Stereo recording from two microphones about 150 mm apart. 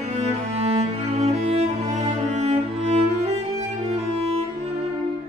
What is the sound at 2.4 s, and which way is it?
Music, 45° right (ahead or behind).